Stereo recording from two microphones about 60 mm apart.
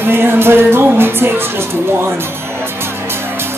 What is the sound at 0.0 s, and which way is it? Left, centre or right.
Music, right.